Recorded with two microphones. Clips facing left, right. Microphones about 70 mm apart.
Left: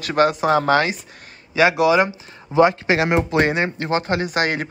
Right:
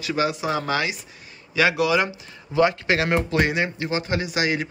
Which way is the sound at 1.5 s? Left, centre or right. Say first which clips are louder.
Left 5 dB; left.